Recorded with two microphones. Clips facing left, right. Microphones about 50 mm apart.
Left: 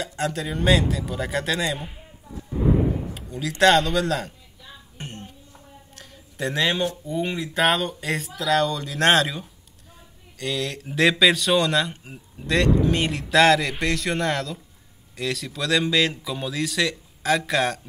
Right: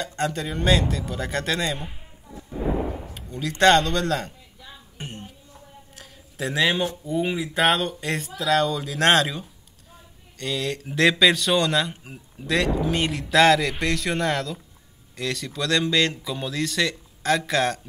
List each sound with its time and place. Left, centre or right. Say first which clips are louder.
0.0 s speech: even; centre
3.2 s speech: even; centre
4.9 s a sound: even; centre
7.1 s speech: right 2 dB; centre